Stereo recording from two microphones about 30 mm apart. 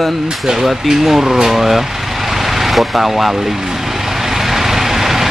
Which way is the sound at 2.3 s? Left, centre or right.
Centre.